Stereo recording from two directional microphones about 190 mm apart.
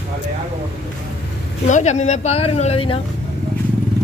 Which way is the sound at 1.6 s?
40° left (ahead or behind).